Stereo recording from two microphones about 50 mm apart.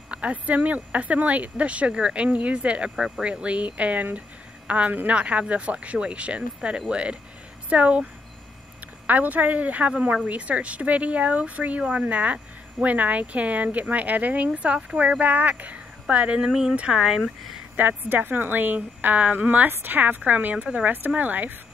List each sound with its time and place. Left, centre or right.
0.1 s a woman's voice: right
16.3 s speech: centre
17.7 s a woman's voice: right